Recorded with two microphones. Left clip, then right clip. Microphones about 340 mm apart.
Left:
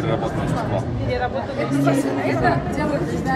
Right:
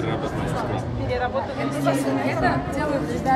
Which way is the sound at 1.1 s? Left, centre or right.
Centre.